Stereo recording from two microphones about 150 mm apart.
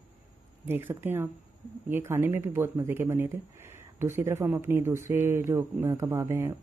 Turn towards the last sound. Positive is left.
turn(degrees=-20)  # may be behind; listen again after turning